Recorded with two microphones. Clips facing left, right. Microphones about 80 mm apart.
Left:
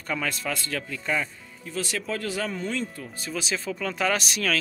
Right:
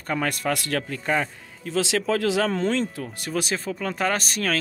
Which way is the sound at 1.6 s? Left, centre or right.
Right.